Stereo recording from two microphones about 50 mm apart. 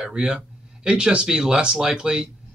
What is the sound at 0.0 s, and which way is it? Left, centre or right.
Speech, centre.